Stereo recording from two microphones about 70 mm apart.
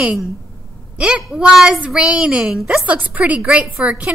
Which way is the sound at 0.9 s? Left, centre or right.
Centre.